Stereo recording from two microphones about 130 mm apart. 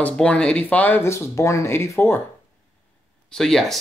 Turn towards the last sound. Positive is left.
turn(degrees=0)  # may be behind; listen again after turning